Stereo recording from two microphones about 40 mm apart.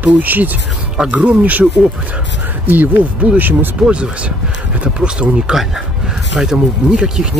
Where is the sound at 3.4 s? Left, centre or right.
Right.